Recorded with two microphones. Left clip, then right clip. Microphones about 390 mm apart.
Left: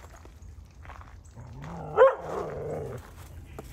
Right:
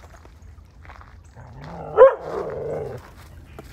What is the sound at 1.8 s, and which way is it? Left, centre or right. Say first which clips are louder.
Dog: right 7 dB; right.